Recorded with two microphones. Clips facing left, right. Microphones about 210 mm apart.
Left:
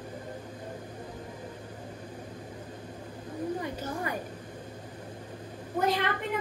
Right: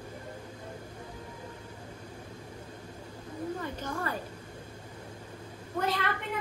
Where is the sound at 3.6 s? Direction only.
10° left (ahead or behind).